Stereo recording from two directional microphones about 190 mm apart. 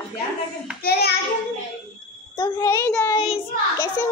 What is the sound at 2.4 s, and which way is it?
Child singing, 15° left (ahead or behind).